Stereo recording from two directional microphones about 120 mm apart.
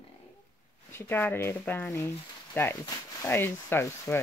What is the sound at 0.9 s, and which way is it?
Speech, 15° left (ahead or behind).